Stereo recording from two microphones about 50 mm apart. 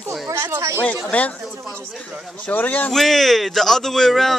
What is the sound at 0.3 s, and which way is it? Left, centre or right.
Speech, right.